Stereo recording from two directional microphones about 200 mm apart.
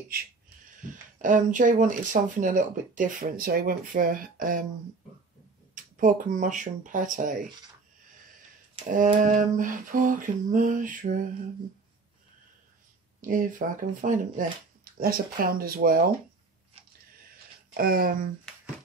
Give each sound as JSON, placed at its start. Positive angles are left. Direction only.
{"t": 0.8, "sound": "speech", "side_deg": -40}
{"t": 5.8, "sound": "speech", "side_deg": -40}
{"t": 8.9, "sound": "speech", "side_deg": -40}
{"t": 13.2, "sound": "speech", "side_deg": -40}
{"t": 16.8, "sound": "a sound", "side_deg": -30}
{"t": 17.7, "sound": "speech", "side_deg": -45}